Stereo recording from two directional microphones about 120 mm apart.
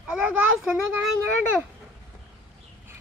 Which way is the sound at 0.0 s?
10° right (ahead or behind).